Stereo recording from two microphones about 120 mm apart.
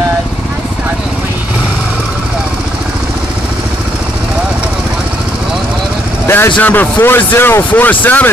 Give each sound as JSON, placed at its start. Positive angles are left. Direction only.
{"t": 6.2, "sound": "vehicle", "side_deg": 20}
{"t": 6.5, "sound": "a man's voice", "side_deg": 15}